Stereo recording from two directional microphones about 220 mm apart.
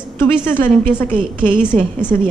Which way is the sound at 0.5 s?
10° left (ahead or behind).